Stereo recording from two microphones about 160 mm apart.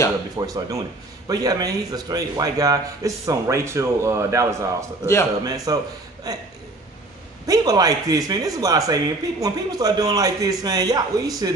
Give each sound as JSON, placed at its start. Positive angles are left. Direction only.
{"t": 0.5, "sound": "a man's voice", "side_deg": -20}
{"t": 7.4, "sound": "a man's voice", "side_deg": -25}